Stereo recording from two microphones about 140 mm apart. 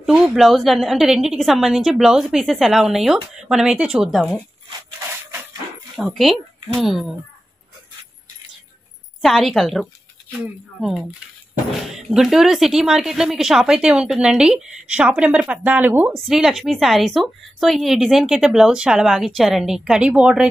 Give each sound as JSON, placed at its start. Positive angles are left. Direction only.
{"t": 0.0, "sound": "a woman's voice", "side_deg": -5}
{"t": 5.9, "sound": "a woman's voice", "side_deg": -5}
{"t": 9.2, "sound": "a woman's voice", "side_deg": 0}